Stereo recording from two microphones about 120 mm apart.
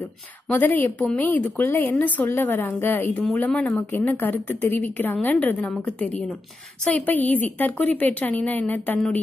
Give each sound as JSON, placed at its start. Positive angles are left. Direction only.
{"t": 0.5, "sound": "a woman's voice", "side_deg": 15}